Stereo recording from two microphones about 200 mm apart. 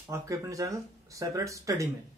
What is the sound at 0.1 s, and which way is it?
Speech, 15° right (ahead or behind).